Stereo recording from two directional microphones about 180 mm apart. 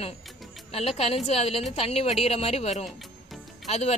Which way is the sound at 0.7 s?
35° left (ahead or behind).